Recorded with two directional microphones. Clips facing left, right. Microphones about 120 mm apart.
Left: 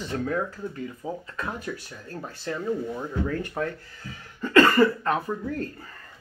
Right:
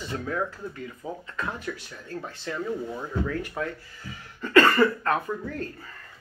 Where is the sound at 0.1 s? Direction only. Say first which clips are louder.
Left 4 dB; 35° left (ahead or behind).